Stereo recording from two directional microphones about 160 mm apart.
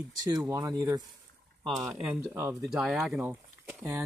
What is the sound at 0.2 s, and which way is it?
Speech, 25° right (ahead or behind).